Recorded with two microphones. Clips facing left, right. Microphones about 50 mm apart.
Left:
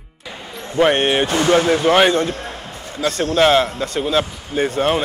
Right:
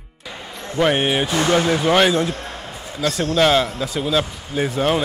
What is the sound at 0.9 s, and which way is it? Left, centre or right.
Speech, centre.